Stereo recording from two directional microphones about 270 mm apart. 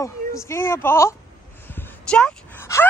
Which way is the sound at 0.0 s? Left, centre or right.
Centre.